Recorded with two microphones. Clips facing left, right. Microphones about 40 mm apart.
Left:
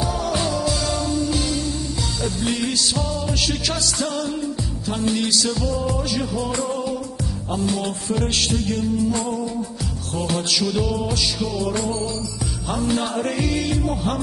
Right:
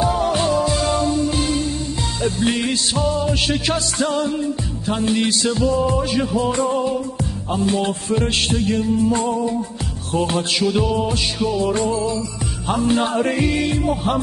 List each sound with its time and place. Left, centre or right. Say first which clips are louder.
0.0 s music: right 5 dB; right